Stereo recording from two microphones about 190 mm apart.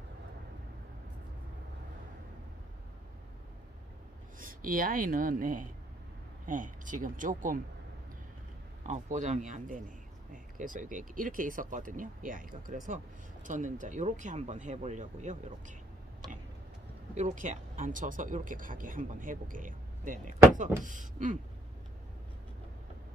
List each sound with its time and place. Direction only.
4.4 s a man's voice: 45° right (ahead or behind)
8.8 s a man's voice: 40° right (ahead or behind)
17.1 s a man's voice: 40° right (ahead or behind)